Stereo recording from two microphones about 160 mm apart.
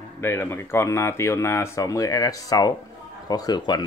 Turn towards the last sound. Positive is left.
turn(degrees=25)  # may be behind; listen again after turning